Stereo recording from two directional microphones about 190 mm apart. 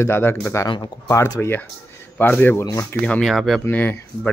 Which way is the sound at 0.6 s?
25° left (ahead or behind).